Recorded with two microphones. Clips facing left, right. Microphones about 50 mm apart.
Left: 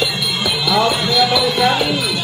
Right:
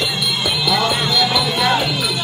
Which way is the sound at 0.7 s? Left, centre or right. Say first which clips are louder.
Left 3 dB; centre.